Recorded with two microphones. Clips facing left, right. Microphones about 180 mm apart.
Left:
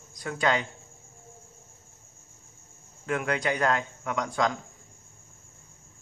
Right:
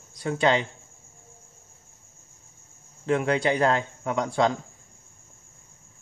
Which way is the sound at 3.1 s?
30° right (ahead or behind).